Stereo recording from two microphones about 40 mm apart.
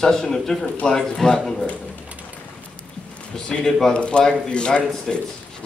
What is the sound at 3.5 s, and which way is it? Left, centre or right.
Speech, centre.